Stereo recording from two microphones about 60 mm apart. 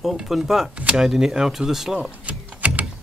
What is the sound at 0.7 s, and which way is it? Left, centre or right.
Speech, centre.